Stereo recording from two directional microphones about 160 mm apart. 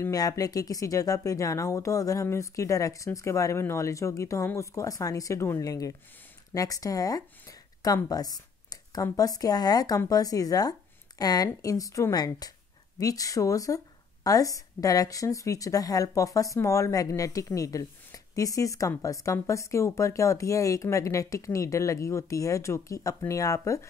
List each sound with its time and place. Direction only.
0.0 s speech: 20° left (ahead or behind)